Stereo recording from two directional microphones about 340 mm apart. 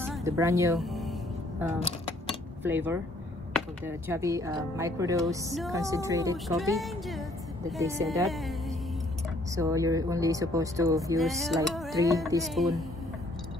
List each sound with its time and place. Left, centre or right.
0.0 s music: centre
2.2 s a sound: centre
3.5 s speech: centre
5.6 s music: centre
7.7 s speech: centre
9.6 s speech: centre
11.6 s music: centre